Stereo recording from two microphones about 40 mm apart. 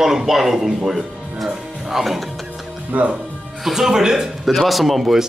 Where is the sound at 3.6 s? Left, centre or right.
Centre.